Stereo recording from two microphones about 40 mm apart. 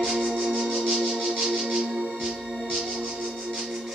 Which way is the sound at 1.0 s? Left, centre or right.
Centre.